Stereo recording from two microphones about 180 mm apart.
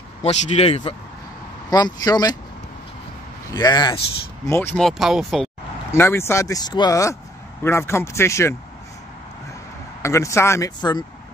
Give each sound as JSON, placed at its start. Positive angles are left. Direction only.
{"t": 0.2, "sound": "speech", "side_deg": 35}
{"t": 1.7, "sound": "speech", "side_deg": 20}
{"t": 3.5, "sound": "speech", "side_deg": 25}
{"t": 4.5, "sound": "speech", "side_deg": 10}
{"t": 5.9, "sound": "speech", "side_deg": 15}
{"t": 10.0, "sound": "speech", "side_deg": 15}